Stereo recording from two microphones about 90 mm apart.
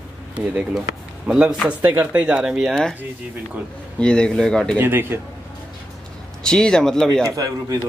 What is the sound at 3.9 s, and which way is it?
Speech, 10° left (ahead or behind).